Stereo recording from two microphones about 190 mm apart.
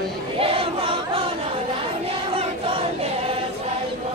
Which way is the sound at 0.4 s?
30° right (ahead or behind).